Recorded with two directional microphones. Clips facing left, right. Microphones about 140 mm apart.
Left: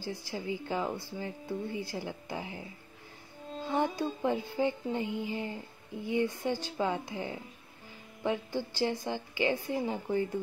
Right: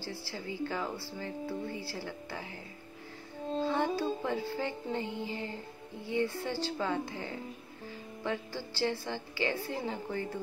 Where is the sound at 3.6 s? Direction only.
15° left (ahead or behind).